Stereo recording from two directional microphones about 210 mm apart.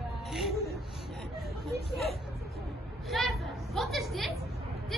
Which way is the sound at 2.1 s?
Centre (ahead or behind).